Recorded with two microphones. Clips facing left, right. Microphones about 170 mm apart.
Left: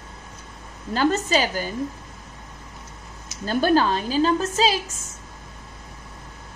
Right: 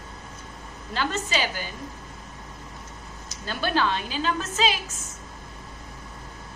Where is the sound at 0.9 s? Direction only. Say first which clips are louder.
Left 7 dB; 40° left (ahead or behind).